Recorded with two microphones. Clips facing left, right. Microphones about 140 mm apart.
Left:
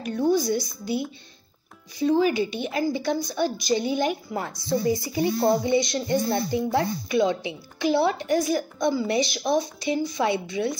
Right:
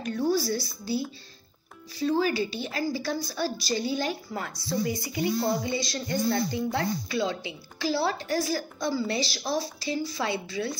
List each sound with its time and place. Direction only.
0.3 s speech: 20° left (ahead or behind)
2.0 s speech: 15° left (ahead or behind)